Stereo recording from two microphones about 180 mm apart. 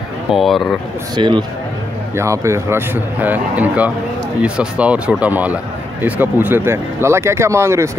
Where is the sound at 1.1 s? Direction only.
25° right (ahead or behind).